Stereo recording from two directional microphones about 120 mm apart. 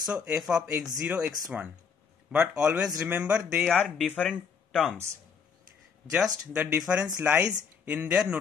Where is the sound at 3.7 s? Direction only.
5° left (ahead or behind).